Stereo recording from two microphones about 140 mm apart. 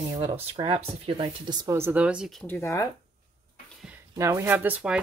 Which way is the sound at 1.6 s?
20° right (ahead or behind).